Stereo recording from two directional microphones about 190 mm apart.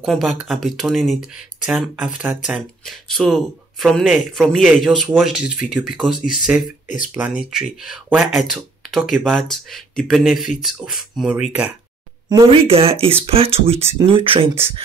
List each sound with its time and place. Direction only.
0.0 s speech: centre (ahead or behind)
12.3 s speech: 25° right (ahead or behind)